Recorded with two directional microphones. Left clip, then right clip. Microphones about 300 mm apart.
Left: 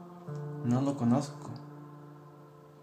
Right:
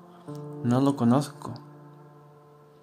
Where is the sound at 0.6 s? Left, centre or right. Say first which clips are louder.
Right 7 dB; right.